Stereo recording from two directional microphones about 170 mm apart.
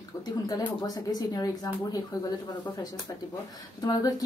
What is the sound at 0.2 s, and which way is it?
Speech, 20° left (ahead or behind).